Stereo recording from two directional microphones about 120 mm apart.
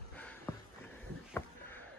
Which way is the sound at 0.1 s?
10° left (ahead or behind).